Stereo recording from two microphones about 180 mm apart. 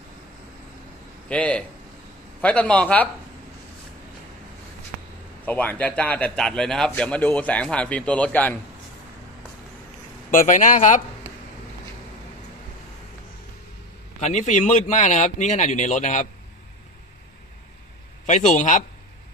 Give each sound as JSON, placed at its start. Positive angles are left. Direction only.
{"t": 1.3, "sound": "speech", "side_deg": 5}
{"t": 5.4, "sound": "speech", "side_deg": 10}
{"t": 10.3, "sound": "speech", "side_deg": 45}
{"t": 14.2, "sound": "speech", "side_deg": 40}
{"t": 18.2, "sound": "speech", "side_deg": 45}